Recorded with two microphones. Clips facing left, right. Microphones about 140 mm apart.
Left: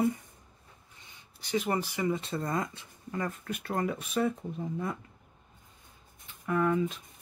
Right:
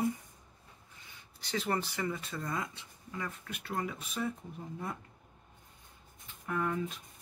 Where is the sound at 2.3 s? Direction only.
40° left (ahead or behind); by 4.3 s 60° left (ahead or behind).